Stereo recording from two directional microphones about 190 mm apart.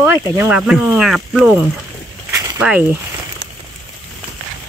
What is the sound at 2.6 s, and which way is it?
Speech, 5° right (ahead or behind).